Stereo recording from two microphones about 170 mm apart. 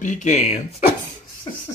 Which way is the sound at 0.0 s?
45° left (ahead or behind).